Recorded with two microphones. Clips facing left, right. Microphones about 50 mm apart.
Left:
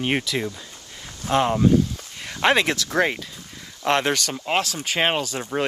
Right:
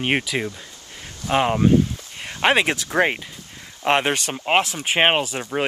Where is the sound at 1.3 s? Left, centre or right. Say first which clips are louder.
Right 1 dB; right.